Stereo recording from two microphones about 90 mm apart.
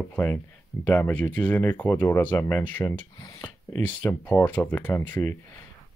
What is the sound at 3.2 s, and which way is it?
Speech, 35° left (ahead or behind).